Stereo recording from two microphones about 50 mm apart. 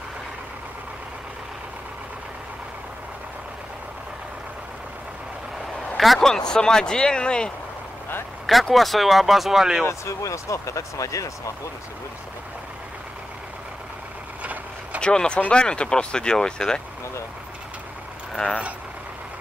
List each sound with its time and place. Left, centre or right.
5.9 s speech: centre
6.2 s speech: centre
8.5 s speech: centre
9.8 s speech: left
14.4 s vehicle: right
15.0 s speech: centre